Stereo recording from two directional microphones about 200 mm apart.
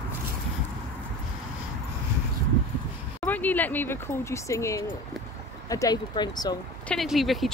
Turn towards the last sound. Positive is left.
turn(degrees=0)  # may be behind; listen again after turning